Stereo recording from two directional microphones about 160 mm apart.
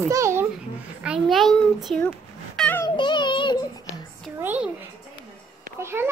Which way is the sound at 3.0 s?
30° left (ahead or behind).